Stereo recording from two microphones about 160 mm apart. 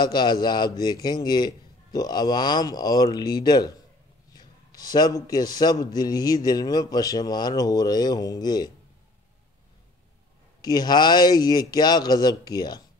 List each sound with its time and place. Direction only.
0.0 s a man's voice: 25° left (ahead or behind)
10.6 s a man's voice: 25° left (ahead or behind)